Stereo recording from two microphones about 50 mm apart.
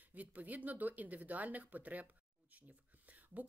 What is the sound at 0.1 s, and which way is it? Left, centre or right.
A woman's voice, right.